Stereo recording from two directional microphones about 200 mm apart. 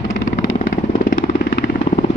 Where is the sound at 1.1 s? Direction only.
45° left (ahead or behind).